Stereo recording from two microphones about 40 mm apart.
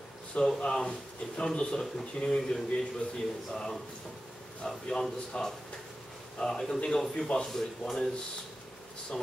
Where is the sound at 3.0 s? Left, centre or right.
Left.